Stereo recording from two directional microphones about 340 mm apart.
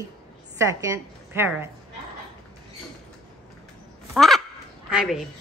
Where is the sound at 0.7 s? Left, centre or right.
Centre.